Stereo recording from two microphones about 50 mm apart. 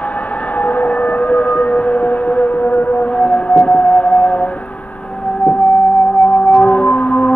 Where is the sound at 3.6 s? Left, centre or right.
Left.